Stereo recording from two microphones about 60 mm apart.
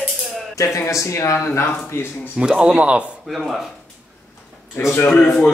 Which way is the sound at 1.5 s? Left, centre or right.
Left.